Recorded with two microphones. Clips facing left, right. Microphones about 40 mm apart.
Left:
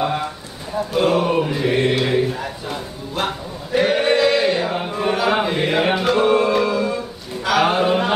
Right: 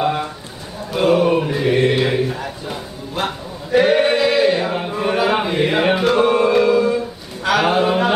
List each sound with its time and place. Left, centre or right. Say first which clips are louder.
0.9 s mantra: right 3 dB; centre
1.9 s chant: right 2 dB; centre
2.3 s a sound: even; centre
7.4 s mantra: right 1 dB; centre